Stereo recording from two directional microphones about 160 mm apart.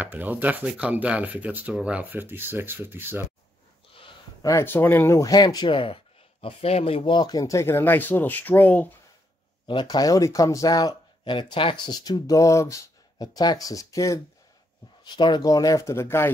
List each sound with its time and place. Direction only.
0.0 s speech: 10° right (ahead or behind)
3.9 s a sound: 35° left (ahead or behind)
4.5 s speech: 15° left (ahead or behind)
9.7 s speech: 25° left (ahead or behind)